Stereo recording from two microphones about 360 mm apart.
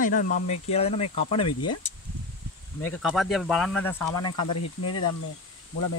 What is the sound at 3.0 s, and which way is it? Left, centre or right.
Speech, centre.